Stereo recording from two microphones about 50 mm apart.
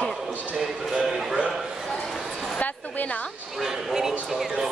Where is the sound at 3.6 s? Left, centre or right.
Centre.